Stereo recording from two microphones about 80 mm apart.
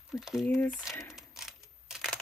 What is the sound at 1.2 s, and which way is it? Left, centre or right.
Coin, centre.